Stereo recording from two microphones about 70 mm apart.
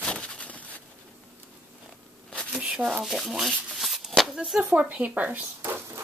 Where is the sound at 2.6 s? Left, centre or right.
Centre.